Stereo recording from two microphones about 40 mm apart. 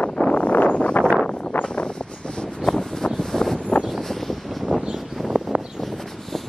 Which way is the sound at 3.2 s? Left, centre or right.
Centre.